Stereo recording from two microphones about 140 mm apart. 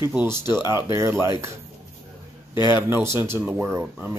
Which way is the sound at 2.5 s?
30° left (ahead or behind).